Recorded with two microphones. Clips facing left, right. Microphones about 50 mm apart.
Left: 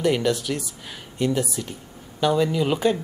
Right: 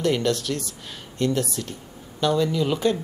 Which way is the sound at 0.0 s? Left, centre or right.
Centre.